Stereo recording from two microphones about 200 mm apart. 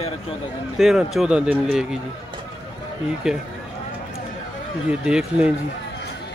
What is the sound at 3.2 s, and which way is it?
Speech, 5° right (ahead or behind).